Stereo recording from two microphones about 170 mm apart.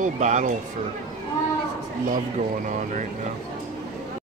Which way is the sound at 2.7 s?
45° right (ahead or behind).